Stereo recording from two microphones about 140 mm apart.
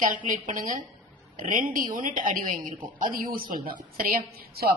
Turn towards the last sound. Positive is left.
turn(degrees=-90)